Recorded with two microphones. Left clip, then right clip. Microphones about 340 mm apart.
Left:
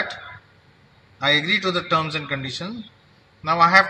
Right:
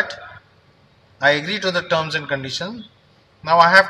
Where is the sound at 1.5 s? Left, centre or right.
Right.